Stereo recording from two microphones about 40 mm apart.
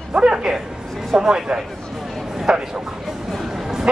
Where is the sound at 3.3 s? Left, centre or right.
Centre.